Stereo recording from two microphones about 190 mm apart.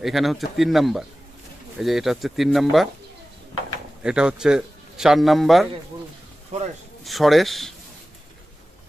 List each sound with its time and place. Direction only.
0.0 s speech: centre (ahead or behind)
4.0 s a man's voice: 5° right (ahead or behind)
6.5 s speech: 35° right (ahead or behind)
7.1 s speech: centre (ahead or behind)